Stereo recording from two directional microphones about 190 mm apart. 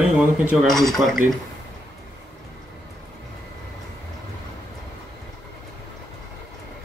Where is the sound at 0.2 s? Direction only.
5° right (ahead or behind).